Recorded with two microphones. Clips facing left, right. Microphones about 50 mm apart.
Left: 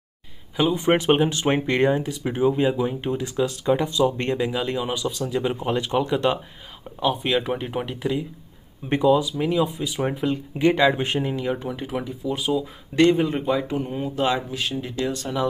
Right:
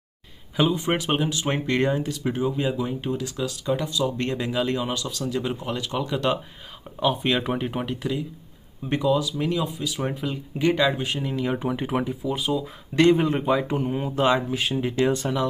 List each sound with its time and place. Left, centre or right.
0.7 s speech: left
4.4 s speech: centre
5.7 s speech: left
5.9 s speech: centre
7.0 s speech: centre
8.8 s speech: left
11.0 s speech: left
11.5 s speech: centre
12.1 s speech: centre
14.8 s speech: right